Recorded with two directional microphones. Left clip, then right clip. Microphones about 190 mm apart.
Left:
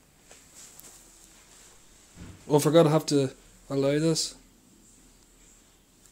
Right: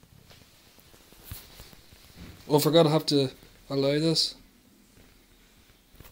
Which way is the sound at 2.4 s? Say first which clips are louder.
Left 1 dB; 5° left (ahead or behind).